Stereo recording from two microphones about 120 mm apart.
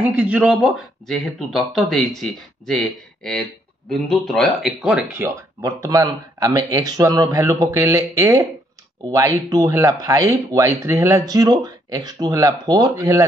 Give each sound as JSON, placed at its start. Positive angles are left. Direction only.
{"t": 0.0, "sound": "speech", "side_deg": -15}
{"t": 5.1, "sound": "speech", "side_deg": -25}